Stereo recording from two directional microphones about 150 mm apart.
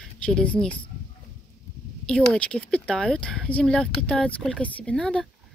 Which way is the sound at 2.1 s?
5° left (ahead or behind).